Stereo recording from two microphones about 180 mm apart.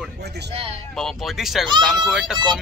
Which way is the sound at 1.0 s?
Centre (ahead or behind).